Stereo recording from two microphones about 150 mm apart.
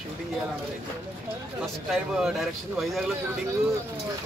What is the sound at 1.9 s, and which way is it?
Speech, centre (ahead or behind).